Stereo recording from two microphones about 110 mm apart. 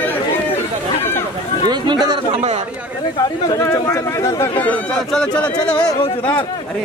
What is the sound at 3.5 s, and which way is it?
Speech, 25° left (ahead or behind).